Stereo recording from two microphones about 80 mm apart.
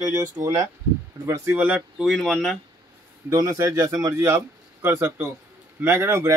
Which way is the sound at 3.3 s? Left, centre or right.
Right.